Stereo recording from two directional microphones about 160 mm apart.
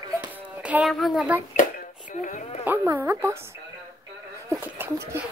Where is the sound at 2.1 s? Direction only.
55° left (ahead or behind).